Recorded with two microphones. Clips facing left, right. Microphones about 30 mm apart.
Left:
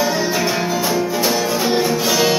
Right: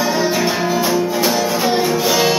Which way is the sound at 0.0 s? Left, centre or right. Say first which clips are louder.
Right 1 dB; centre.